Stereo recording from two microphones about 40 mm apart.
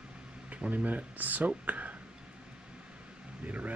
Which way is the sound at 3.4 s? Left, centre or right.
Right.